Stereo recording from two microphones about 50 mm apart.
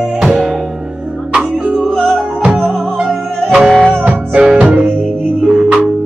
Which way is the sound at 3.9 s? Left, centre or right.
Right.